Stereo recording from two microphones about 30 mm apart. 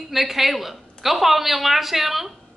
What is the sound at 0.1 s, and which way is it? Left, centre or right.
A woman's voice, centre.